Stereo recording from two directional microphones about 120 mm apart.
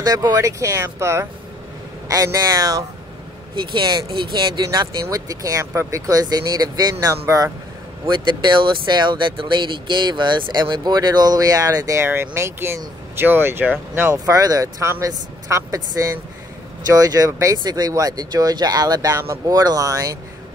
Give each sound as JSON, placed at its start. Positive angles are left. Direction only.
{"t": 0.0, "sound": "speech", "side_deg": -30}
{"t": 8.1, "sound": "speech", "side_deg": -40}